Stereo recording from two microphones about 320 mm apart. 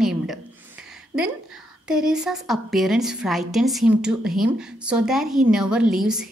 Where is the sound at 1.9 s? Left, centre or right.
Centre.